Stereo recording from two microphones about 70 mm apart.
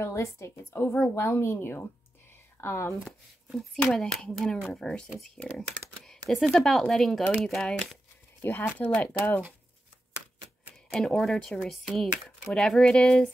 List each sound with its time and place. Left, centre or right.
0.0 s a woman's voice: left
3.5 s speech: centre
4.3 s speech: centre
8.5 s a woman's voice: left
10.9 s speech: centre